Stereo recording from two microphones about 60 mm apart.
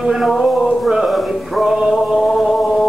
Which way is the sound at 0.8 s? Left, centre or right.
Centre.